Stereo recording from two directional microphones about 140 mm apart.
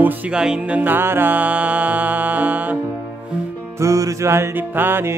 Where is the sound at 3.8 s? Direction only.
20° right (ahead or behind).